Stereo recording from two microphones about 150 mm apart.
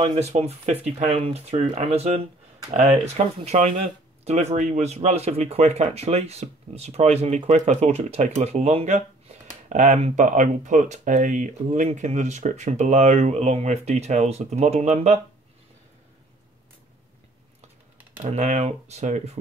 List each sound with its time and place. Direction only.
0.2 s speech: 45° right (ahead or behind)
3.4 s speech: 50° right (ahead or behind)
18.2 s speech: 50° right (ahead or behind)